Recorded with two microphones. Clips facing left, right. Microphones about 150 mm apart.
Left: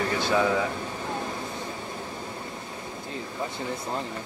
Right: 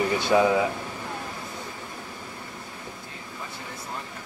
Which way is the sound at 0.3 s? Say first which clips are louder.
Right 4 dB; 15° right (ahead or behind).